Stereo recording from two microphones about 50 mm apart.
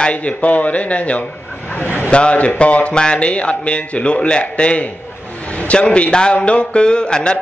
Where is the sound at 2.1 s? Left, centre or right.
Left.